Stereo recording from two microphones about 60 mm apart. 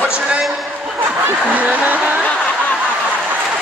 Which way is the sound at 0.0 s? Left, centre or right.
Centre.